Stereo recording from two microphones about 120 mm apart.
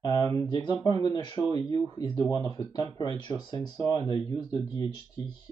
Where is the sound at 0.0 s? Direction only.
35° left (ahead or behind).